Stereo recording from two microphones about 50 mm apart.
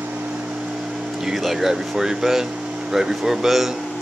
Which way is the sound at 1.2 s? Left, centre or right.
Centre.